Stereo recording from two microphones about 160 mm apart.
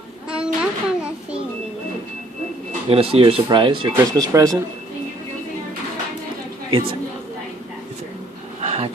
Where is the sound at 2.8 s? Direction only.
35° right (ahead or behind).